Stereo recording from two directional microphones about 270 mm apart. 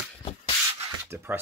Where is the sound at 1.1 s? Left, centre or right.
Centre.